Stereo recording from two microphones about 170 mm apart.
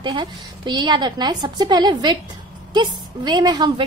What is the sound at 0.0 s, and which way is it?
A woman's voice, 25° right (ahead or behind).